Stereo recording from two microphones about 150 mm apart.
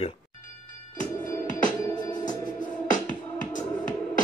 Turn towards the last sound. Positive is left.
turn(degrees=60)  # may be behind; listen again after turning